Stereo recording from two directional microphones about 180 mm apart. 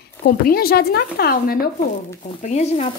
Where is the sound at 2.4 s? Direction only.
40° left (ahead or behind).